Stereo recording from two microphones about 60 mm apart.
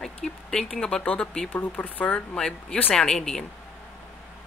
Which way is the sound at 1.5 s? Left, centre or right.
Left.